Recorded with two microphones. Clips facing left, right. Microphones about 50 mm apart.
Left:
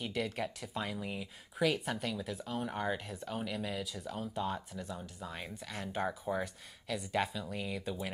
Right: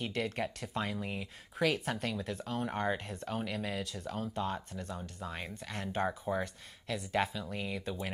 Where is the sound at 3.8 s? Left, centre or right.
Centre.